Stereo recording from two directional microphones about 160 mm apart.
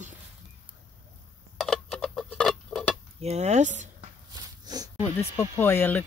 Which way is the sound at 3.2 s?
45° right (ahead or behind).